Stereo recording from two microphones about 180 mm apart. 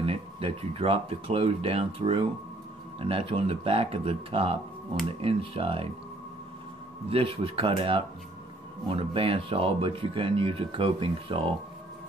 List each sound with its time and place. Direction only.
0.0 s speech: 30° right (ahead or behind)
7.1 s speech: 30° right (ahead or behind)